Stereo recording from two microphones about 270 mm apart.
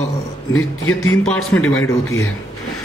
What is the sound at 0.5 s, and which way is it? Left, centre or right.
Speech, left.